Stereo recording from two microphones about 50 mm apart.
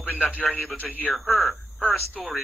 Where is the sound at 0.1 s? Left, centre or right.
Left.